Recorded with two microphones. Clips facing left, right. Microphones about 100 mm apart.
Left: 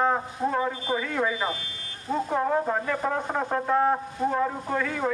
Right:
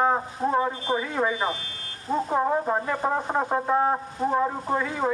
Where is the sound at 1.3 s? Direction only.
30° right (ahead or behind).